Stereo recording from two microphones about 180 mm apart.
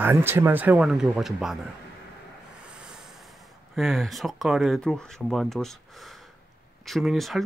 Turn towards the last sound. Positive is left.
turn(degrees=0)  # may be behind; listen again after turning